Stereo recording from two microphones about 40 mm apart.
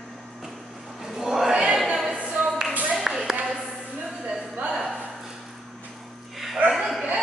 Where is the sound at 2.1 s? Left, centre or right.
Right.